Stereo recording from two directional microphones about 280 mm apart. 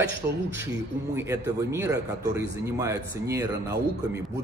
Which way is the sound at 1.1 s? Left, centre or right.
Centre.